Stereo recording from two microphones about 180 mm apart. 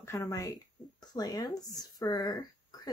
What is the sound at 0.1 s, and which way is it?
Speech, 20° left (ahead or behind).